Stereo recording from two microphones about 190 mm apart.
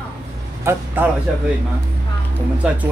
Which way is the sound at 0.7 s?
15° right (ahead or behind).